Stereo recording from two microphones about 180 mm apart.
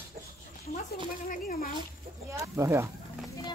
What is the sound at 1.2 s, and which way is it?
Speech, 50° left (ahead or behind).